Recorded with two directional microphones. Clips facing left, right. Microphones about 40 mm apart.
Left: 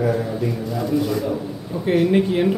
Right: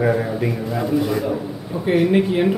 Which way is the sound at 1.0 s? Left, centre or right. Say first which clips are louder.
Right 1 dB; right.